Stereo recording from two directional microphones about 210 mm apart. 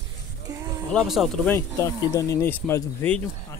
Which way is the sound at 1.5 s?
15° left (ahead or behind).